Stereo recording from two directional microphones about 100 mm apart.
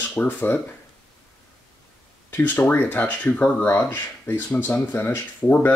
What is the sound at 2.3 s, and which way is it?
Speech, 20° left (ahead or behind).